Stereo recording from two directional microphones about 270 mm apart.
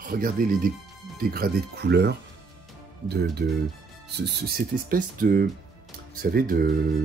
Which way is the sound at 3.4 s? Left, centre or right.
Right.